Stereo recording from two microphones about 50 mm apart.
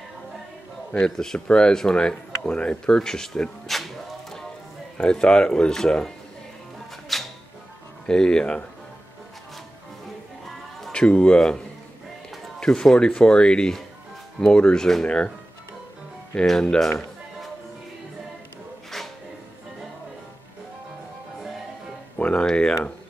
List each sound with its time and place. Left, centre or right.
0.9 s speech: centre
4.9 s speech: centre
7.1 s music: centre
8.1 s speech: centre
10.9 s speech: left
16.3 s speech: centre
18.9 s music: centre
22.1 s music: left